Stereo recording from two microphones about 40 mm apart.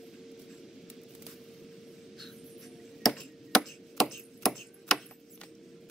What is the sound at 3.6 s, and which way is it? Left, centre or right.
Chopping, centre.